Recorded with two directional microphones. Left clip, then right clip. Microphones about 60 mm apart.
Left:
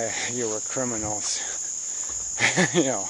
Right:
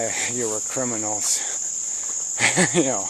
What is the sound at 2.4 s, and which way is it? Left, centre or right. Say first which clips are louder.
Cricket: right 2 dB; centre.